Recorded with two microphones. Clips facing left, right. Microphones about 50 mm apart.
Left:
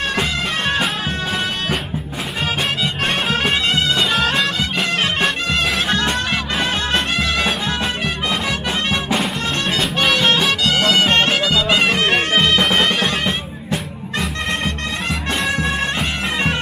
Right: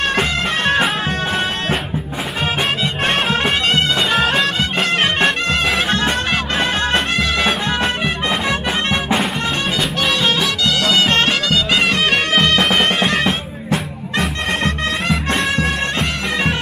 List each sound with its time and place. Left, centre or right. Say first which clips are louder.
0.2 s music: right 3 dB; centre
2.8 s music: right 2 dB; centre
4.6 s music: right 2 dB; right
5.5 s music: right 2 dB; centre
9.8 s music: left 3 dB; centre
12.8 s music: right 2 dB; centre
14.1 s music: right 3 dB; centre
15.6 s bagpipes: right 1 dB; centre